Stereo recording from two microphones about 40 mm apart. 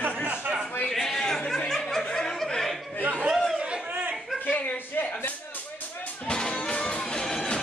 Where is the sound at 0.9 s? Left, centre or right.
Centre.